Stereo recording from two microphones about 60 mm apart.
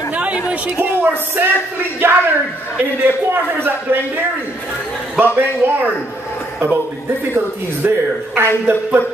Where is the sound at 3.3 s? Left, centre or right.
Right.